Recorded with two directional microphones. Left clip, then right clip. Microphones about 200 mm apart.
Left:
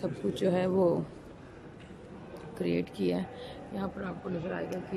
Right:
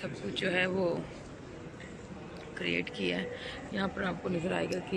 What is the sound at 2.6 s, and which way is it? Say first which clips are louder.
Speech: left 1 dB; 20° left (ahead or behind).